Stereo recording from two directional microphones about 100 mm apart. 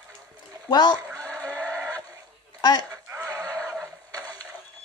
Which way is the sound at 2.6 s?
45° left (ahead or behind).